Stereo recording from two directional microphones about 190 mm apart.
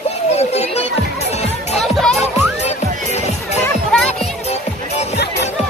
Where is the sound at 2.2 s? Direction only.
35° left (ahead or behind).